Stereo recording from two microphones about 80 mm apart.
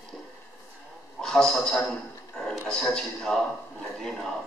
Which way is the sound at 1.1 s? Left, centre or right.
Centre.